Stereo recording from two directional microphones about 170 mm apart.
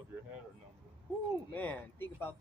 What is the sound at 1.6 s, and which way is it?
Speech, 10° left (ahead or behind).